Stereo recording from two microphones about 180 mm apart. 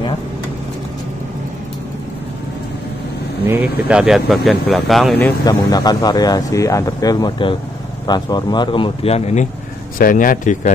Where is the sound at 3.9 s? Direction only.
5° right (ahead or behind).